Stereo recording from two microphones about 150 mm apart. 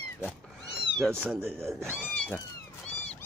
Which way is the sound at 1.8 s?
5° left (ahead or behind).